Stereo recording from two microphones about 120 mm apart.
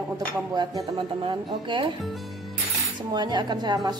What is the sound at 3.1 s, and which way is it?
Speech, 35° right (ahead or behind).